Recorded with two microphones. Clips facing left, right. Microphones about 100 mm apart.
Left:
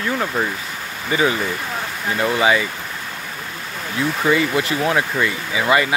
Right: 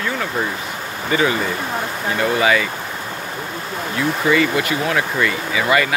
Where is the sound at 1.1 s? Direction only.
20° left (ahead or behind).